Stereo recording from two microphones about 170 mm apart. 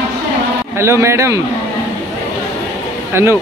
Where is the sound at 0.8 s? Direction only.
15° right (ahead or behind).